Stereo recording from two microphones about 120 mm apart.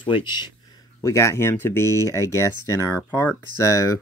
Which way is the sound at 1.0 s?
25° left (ahead or behind).